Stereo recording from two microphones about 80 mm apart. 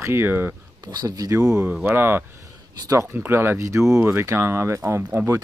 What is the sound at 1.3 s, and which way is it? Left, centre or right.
Speech, right.